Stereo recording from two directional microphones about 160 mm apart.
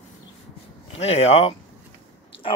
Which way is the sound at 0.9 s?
40° left (ahead or behind).